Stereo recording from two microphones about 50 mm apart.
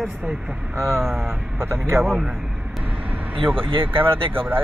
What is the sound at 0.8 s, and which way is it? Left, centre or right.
Speech, right.